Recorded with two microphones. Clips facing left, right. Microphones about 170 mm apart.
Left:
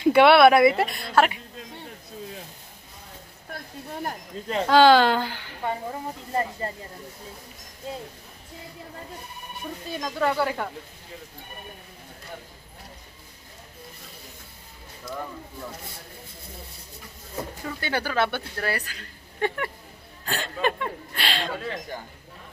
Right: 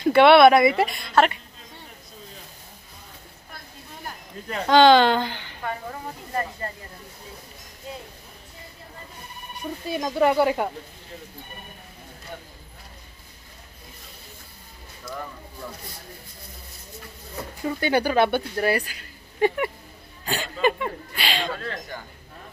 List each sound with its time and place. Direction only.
0.0 s a woman's voice: 10° left (ahead or behind)
3.9 s a sound: 50° left (ahead or behind)
4.6 s a woman's voice: 5° left (ahead or behind)
5.6 s speech: 25° left (ahead or behind)
9.9 s speech: 20° right (ahead or behind)
17.6 s a woman's voice: 15° right (ahead or behind)
21.5 s speech: 15° left (ahead or behind)